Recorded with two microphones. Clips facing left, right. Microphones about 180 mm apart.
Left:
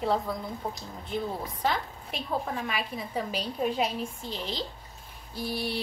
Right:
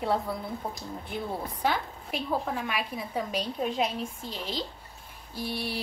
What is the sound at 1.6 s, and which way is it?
A woman's voice, centre (ahead or behind).